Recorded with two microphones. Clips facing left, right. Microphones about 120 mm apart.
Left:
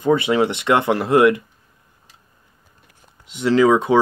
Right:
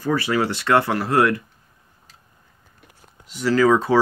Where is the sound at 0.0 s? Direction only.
20° left (ahead or behind).